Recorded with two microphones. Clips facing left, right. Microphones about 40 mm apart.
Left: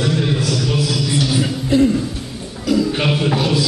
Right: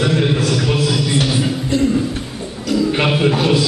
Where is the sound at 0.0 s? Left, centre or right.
Right.